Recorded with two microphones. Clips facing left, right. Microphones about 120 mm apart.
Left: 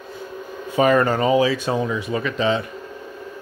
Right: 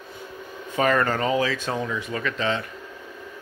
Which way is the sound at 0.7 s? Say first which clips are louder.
Left 5 dB; 15° left (ahead or behind).